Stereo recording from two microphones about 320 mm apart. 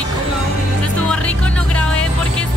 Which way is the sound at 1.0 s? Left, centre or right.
Centre.